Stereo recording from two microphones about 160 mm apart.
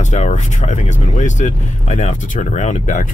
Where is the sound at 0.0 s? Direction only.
50° left (ahead or behind).